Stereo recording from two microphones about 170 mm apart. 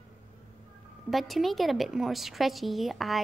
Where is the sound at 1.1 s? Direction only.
Centre (ahead or behind).